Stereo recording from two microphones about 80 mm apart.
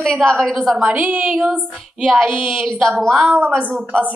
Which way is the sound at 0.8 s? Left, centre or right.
Centre.